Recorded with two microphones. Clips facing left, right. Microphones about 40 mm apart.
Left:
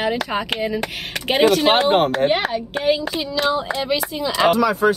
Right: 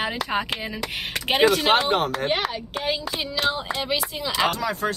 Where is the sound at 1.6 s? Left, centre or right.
Left.